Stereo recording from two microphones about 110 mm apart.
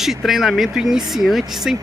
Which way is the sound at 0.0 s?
Centre (ahead or behind).